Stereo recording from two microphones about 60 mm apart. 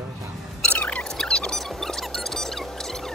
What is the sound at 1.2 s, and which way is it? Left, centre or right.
Squeak, centre.